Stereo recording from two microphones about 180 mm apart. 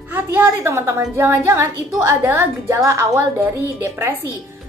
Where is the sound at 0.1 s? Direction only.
10° right (ahead or behind).